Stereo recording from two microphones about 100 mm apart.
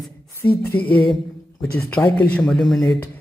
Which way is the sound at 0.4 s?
15° left (ahead or behind).